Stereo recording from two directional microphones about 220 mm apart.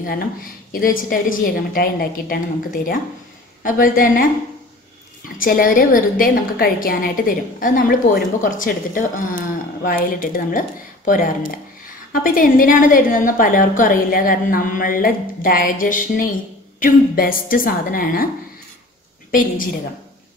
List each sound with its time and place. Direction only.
0.0 s a woman's voice: 40° left (ahead or behind)
5.4 s a woman's voice: 40° left (ahead or behind)
19.3 s a woman's voice: 40° left (ahead or behind)